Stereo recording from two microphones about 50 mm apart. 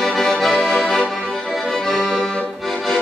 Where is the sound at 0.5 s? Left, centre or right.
Left.